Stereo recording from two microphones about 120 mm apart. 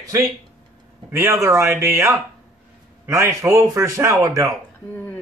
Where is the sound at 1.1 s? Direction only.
25° right (ahead or behind).